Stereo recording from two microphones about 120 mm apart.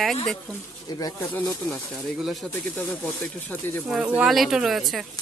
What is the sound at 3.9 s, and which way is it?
Speech, 10° right (ahead or behind).